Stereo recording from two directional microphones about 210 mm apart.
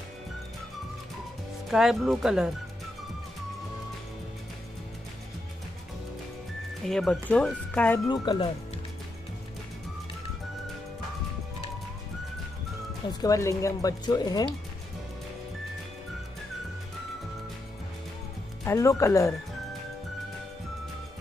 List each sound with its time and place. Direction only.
1.7 s speech: centre (ahead or behind)
6.9 s speech: centre (ahead or behind)
8.1 s speech: 20° left (ahead or behind)
13.2 s speech: 15° left (ahead or behind)
18.6 s speech: 15° left (ahead or behind)